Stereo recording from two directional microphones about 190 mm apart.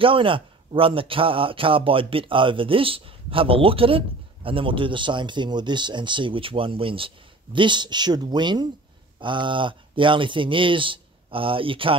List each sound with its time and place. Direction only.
0.0 s a man's voice: 30° right (ahead or behind)